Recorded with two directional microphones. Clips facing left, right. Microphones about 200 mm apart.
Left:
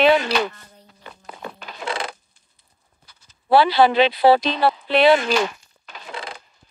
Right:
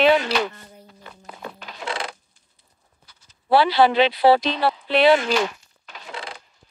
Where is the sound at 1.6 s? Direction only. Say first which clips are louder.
Left 2 dB; 55° left (ahead or behind).